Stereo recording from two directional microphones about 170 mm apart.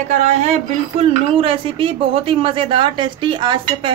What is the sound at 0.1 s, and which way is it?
A woman's voice, 45° right (ahead or behind).